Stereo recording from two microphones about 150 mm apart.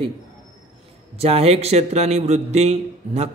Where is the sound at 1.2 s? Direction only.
40° right (ahead or behind).